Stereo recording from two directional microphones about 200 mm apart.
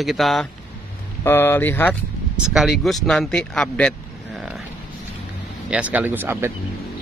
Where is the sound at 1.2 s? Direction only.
10° left (ahead or behind).